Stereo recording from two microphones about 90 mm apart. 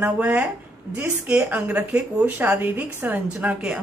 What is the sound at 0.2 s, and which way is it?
Speech, 15° right (ahead or behind).